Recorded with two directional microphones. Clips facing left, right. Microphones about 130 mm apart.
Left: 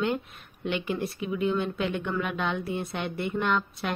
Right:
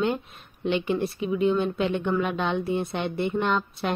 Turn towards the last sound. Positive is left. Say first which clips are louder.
# right 2 dB
turn(degrees=-25)  # may be behind; listen again after turning